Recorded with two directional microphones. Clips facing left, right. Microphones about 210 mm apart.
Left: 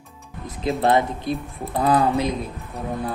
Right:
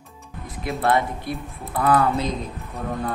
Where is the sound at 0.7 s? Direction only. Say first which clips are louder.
Left 3 dB; 20° left (ahead or behind).